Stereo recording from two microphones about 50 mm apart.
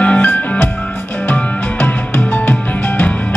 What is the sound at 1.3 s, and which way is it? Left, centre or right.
Music, left.